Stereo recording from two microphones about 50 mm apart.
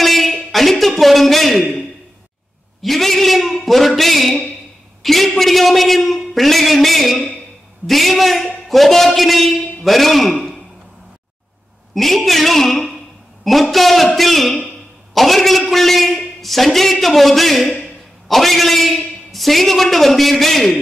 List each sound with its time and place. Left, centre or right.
0.0 s a man's voice: centre
2.8 s a man's voice: centre
11.9 s a man's voice: centre